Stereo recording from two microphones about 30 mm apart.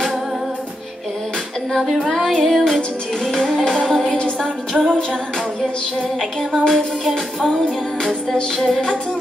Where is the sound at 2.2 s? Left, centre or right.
Centre.